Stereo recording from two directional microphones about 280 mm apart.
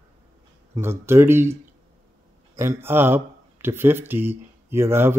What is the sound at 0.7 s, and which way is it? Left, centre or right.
Speech, centre.